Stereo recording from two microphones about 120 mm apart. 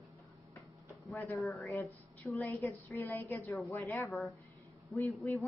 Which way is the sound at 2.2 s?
20° left (ahead or behind).